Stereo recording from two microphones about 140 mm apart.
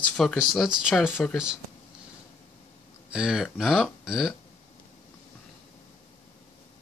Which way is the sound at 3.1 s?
5° right (ahead or behind).